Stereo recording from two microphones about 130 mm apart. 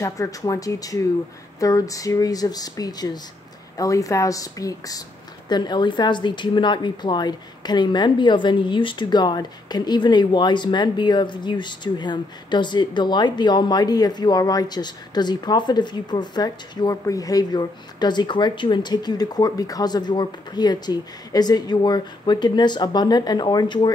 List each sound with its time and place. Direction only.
0.0 s a woman's voice: 25° left (ahead or behind)